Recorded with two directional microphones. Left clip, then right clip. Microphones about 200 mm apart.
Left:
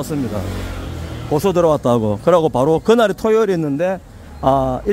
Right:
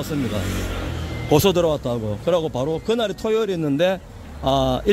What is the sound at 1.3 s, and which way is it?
Speech, centre (ahead or behind).